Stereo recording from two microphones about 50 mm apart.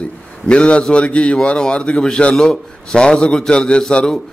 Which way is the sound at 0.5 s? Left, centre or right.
Left.